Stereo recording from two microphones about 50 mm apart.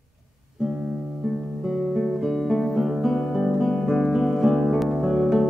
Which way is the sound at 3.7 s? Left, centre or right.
Centre.